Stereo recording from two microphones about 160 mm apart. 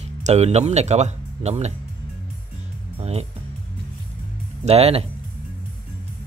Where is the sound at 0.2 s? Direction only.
40° right (ahead or behind).